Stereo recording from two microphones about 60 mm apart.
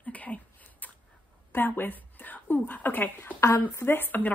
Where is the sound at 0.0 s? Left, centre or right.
Left.